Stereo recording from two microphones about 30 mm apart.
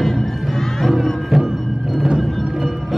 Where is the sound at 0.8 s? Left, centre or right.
Centre.